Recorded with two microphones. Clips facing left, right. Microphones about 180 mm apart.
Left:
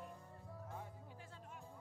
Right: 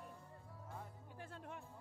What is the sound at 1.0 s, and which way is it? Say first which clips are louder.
Music: right 4 dB; 60° right (ahead or behind).